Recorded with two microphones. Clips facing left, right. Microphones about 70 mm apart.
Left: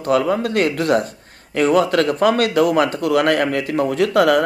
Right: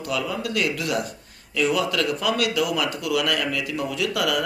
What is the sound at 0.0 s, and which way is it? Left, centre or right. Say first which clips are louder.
Speech: left 10 dB; left.